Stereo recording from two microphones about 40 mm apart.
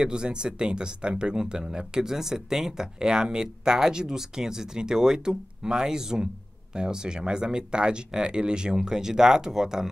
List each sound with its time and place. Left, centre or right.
0.0 s speech: right
1.3 s speech: centre